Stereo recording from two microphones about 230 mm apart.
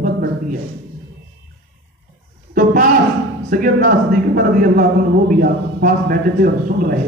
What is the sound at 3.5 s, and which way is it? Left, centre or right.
A man's voice, right.